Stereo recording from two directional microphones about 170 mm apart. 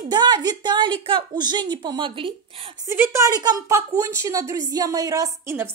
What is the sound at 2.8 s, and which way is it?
A woman's voice, 15° right (ahead or behind).